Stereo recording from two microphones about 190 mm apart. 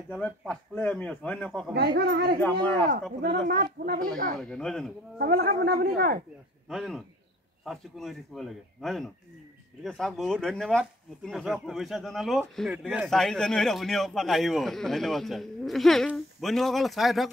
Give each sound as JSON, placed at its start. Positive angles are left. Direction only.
{"t": 0.1, "sound": "speech", "side_deg": 5}
{"t": 1.7, "sound": "speech", "side_deg": -60}
{"t": 2.4, "sound": "speech", "side_deg": 5}
{"t": 2.9, "sound": "speech", "side_deg": -55}
{"t": 4.4, "sound": "a man's voice", "side_deg": 5}
{"t": 5.2, "sound": "speech", "side_deg": -55}
{"t": 6.7, "sound": "a man's voice", "side_deg": 0}